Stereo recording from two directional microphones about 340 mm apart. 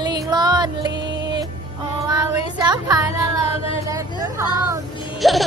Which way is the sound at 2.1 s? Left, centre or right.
Centre.